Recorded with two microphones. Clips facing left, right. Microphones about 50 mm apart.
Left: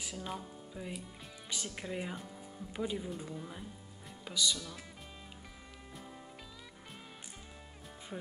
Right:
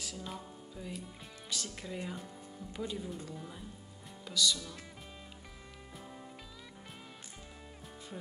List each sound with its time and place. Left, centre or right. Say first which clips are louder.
0.0 s music: left 1 dB; centre
0.8 s speech: left 1 dB; centre
8.1 s speech: left 2 dB; centre